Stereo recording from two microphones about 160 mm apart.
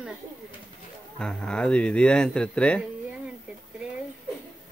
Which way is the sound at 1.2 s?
5° left (ahead or behind).